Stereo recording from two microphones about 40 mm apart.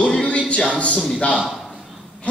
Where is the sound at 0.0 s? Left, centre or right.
Left.